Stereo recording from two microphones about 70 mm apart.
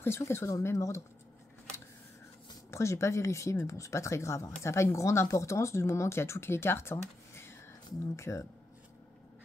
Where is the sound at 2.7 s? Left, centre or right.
Left.